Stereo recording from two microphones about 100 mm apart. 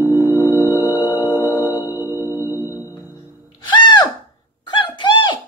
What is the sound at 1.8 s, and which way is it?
Singing bowl, 25° right (ahead or behind).